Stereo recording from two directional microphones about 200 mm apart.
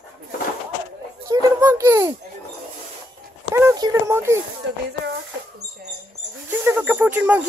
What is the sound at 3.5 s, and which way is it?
Speech, 15° right (ahead or behind).